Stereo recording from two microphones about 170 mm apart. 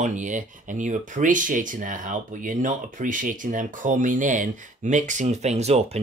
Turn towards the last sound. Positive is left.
turn(degrees=-40)  # may be behind; listen again after turning